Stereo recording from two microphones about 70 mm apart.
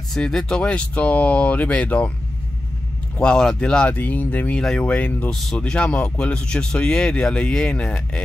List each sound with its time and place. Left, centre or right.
0.1 s speech: centre
3.2 s speech: centre
5.3 s speech: centre
5.6 s speech: centre